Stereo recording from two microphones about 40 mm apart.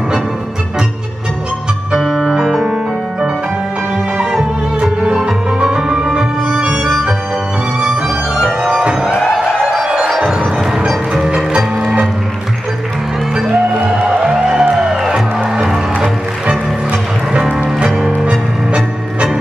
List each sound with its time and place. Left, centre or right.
2.0 s music: centre
2.5 s music: right
5.0 s music: right
6.6 s music: right
7.8 s music: right
9.1 s music: centre
9.6 s music: centre
11.2 s music: right
13.3 s music: centre; by 18.8 s right